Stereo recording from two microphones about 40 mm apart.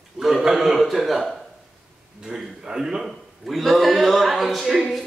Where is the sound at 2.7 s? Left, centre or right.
Centre.